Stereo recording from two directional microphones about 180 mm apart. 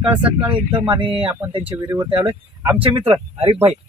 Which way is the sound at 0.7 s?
25° right (ahead or behind).